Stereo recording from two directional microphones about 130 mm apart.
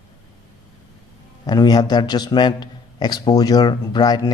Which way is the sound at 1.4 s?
30° left (ahead or behind).